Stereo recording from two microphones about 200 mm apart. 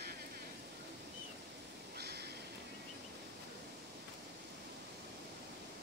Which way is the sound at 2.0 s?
55° right (ahead or behind).